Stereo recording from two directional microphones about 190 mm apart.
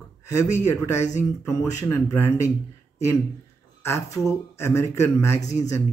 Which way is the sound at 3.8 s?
15° left (ahead or behind).